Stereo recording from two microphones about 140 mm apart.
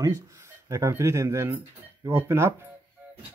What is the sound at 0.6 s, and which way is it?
Speech, 20° right (ahead or behind).